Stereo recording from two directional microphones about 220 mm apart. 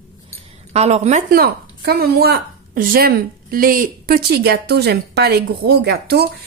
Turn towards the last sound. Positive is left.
turn(degrees=-45)  # may be behind; listen again after turning